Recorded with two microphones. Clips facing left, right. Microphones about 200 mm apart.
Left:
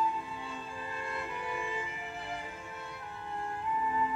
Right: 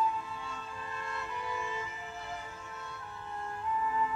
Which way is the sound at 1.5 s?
15° left (ahead or behind).